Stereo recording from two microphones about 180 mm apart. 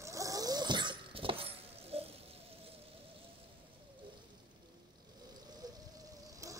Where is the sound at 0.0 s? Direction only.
20° right (ahead or behind); by 2.1 s 35° right (ahead or behind).